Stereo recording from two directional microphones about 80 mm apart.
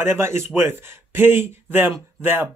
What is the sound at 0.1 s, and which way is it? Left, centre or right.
Speech, right.